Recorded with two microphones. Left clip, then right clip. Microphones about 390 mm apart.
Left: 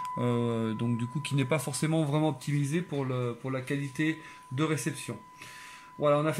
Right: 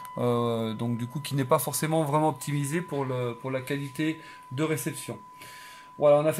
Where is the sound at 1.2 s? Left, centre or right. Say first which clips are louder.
Right 6 dB; right.